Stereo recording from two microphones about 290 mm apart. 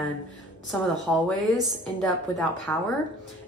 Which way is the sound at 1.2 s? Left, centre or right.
Centre.